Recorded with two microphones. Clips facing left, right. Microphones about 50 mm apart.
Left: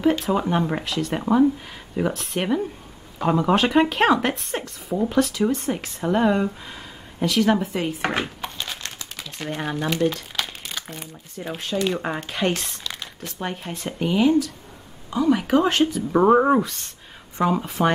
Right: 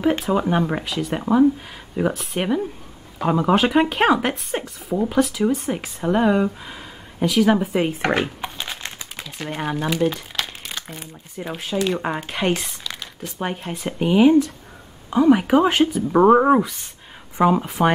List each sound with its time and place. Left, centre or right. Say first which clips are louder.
0.2 s speech: right 2 dB; centre
7.7 s speech: right 4 dB; right
8.2 s crumpling: right 3 dB; centre
9.2 s speech: right 1 dB; centre
13.4 s speech: right 3 dB; centre